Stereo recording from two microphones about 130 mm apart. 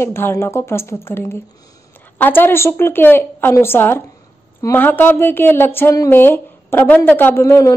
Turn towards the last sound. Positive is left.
turn(degrees=20)  # may be behind; listen again after turning